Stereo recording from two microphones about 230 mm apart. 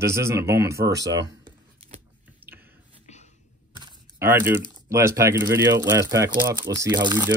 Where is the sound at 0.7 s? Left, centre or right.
Right.